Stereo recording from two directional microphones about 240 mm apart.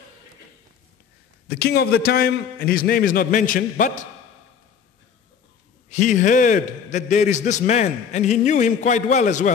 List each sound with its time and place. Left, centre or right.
1.5 s a man's voice: left
5.9 s a man's voice: left